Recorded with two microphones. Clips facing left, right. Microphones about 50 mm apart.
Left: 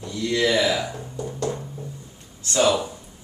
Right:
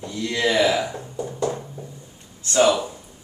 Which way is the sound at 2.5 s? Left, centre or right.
Right.